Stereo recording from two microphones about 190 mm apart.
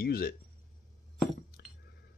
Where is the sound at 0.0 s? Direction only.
55° left (ahead or behind).